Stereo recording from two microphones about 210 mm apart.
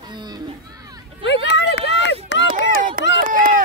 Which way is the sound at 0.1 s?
20° right (ahead or behind).